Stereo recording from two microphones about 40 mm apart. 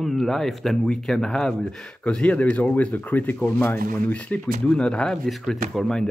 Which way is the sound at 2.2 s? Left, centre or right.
Left.